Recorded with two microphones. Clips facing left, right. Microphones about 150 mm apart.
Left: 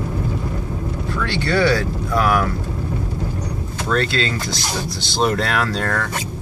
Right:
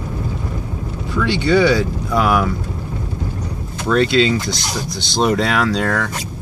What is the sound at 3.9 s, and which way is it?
Speech, 15° right (ahead or behind).